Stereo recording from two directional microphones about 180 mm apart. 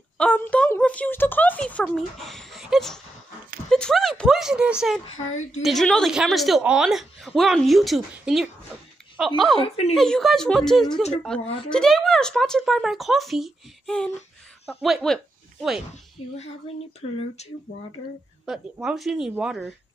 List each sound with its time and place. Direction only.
0.2 s a woman's voice: 5° left (ahead or behind)
5.1 s a child's voice: 40° left (ahead or behind)
5.6 s a woman's voice: centre (ahead or behind)
9.6 s a child's voice: 35° left (ahead or behind)
9.9 s a woman's voice: centre (ahead or behind)
16.2 s a child's voice: 30° left (ahead or behind)
17.4 s a child's voice: 35° left (ahead or behind)
18.4 s a woman's voice: 5° right (ahead or behind)